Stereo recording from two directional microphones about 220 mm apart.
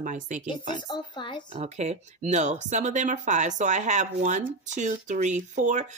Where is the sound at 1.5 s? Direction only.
30° right (ahead or behind).